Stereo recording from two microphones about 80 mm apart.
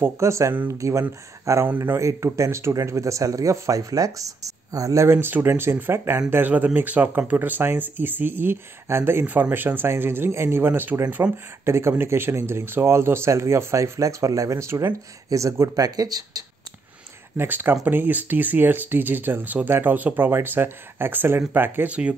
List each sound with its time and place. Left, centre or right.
0.0 s speech: right
11.6 s speech: right
17.4 s speech: right